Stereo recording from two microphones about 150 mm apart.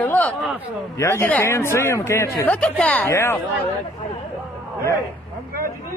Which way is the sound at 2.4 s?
5° left (ahead or behind).